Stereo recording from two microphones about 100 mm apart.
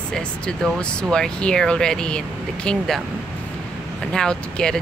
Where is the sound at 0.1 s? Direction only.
10° left (ahead or behind).